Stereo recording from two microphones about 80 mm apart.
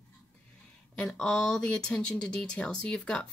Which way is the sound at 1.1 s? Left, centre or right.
Centre.